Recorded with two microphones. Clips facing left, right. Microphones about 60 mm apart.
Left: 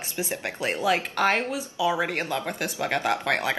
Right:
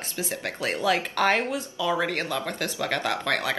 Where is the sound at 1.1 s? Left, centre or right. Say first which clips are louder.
Even; centre.